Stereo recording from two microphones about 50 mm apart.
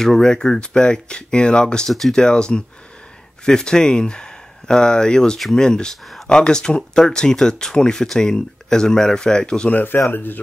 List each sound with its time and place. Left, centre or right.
0.0 s speech: centre
1.9 s speech: centre
2.2 s speech: centre
9.7 s speech: left